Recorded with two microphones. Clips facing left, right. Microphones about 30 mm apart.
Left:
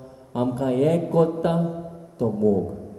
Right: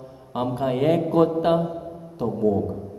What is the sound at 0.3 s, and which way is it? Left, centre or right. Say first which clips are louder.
A man's voice: left 1 dB; right.